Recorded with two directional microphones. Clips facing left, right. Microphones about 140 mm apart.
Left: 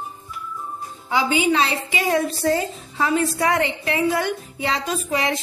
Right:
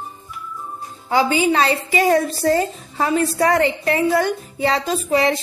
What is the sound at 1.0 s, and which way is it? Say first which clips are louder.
A woman's voice: right 3 dB; 40° right (ahead or behind).